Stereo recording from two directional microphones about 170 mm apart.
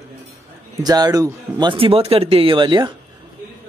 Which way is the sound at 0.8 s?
20° right (ahead or behind).